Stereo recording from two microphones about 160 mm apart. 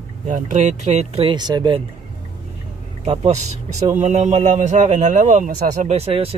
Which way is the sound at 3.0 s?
40° right (ahead or behind).